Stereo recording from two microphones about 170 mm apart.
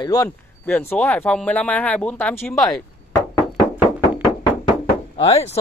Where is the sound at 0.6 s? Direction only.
10° left (ahead or behind).